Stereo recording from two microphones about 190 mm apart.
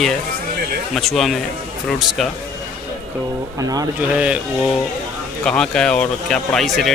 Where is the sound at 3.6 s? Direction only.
20° right (ahead or behind).